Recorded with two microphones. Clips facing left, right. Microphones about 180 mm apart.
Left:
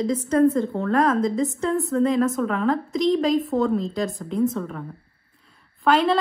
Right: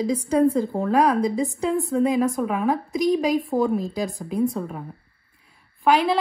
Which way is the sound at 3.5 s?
30° right (ahead or behind).